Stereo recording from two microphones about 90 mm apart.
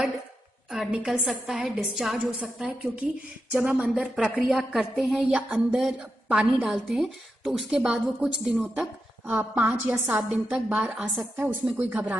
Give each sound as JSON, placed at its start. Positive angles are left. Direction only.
{"t": 1.0, "sound": "a woman's voice", "side_deg": 0}
{"t": 9.3, "sound": "a woman's voice", "side_deg": -20}